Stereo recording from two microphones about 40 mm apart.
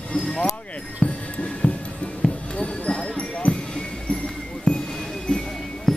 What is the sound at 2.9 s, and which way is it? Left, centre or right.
Music, left.